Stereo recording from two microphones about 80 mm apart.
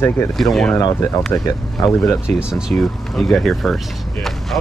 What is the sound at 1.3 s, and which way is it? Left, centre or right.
Speech, left.